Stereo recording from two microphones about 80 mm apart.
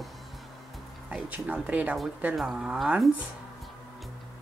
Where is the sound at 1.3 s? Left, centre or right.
Centre.